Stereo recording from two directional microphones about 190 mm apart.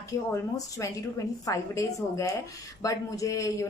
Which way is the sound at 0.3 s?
15° left (ahead or behind).